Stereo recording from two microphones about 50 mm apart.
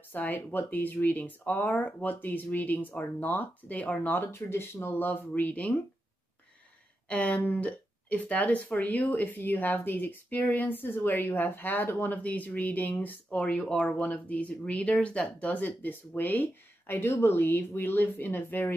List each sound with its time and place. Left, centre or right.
0.1 s speech: left
4.3 s speech: left
7.1 s speech: left
12.2 s speech: left
13.6 s speech: centre; by 17.0 s left
17.0 s speech: left
17.3 s speech: left